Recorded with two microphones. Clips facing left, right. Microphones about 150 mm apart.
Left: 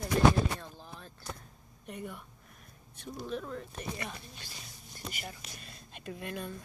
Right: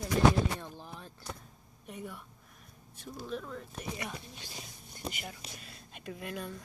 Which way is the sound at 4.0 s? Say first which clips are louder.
Right 1 dB; 10° right (ahead or behind).